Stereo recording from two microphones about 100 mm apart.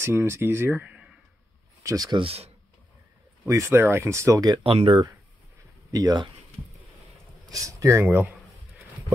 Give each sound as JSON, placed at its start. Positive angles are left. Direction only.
{"t": 0.0, "sound": "speech", "side_deg": -25}
{"t": 1.8, "sound": "speech", "side_deg": -30}
{"t": 2.0, "sound": "speech", "side_deg": -55}
{"t": 3.4, "sound": "speech", "side_deg": -30}
{"t": 4.6, "sound": "speech", "side_deg": -60}
{"t": 5.9, "sound": "speech", "side_deg": -40}
{"t": 7.5, "sound": "speech", "side_deg": -30}